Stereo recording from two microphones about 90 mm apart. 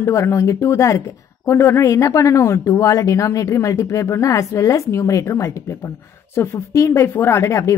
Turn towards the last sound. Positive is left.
turn(degrees=35)  # may be behind; listen again after turning